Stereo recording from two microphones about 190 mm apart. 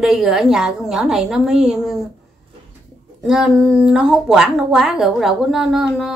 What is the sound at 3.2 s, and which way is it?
Speech, 5° right (ahead or behind).